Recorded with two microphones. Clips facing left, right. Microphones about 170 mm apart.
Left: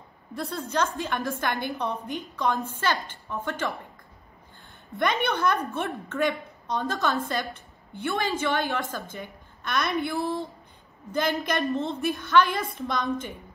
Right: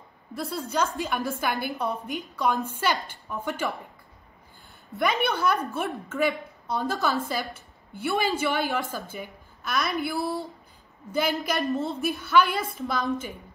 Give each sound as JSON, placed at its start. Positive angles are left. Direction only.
{"t": 0.3, "sound": "a woman's voice", "side_deg": -5}
{"t": 4.9, "sound": "a woman's voice", "side_deg": -5}
{"t": 10.2, "sound": "speech", "side_deg": 20}
{"t": 11.1, "sound": "a woman's voice", "side_deg": -5}